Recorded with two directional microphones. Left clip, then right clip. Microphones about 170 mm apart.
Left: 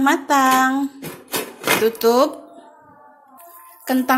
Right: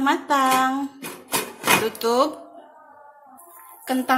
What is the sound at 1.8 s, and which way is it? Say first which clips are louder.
Speech: left 5 dB; 35° left (ahead or behind).